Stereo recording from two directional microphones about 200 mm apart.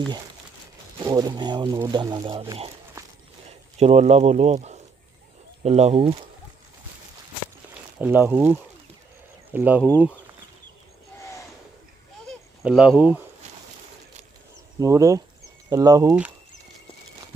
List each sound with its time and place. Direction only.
0.9 s speech: 20° right (ahead or behind)
3.7 s speech: 30° right (ahead or behind)
8.0 s speech: 10° right (ahead or behind)
11.1 s a sound: 15° left (ahead or behind)
12.3 s a sound: 5° right (ahead or behind)
14.8 s speech: 15° right (ahead or behind)